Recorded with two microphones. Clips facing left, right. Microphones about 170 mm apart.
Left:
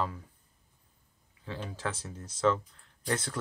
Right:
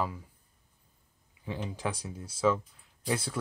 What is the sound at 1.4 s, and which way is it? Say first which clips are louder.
Speech: right 2 dB; 15° right (ahead or behind).